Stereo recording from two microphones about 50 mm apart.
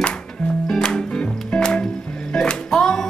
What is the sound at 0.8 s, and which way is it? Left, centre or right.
Music, centre.